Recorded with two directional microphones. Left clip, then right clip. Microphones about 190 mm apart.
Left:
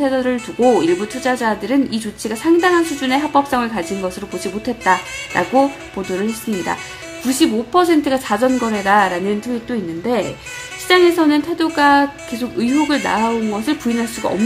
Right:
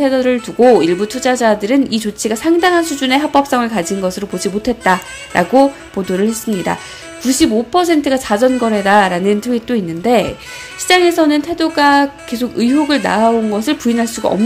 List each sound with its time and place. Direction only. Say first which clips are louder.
0.0 s speech: right 4 dB; 20° right (ahead or behind)